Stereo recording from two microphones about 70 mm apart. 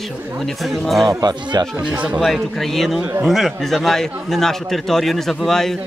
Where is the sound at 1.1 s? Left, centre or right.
Right.